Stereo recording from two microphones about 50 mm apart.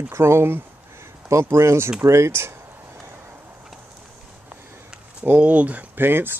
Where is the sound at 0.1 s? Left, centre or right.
Right.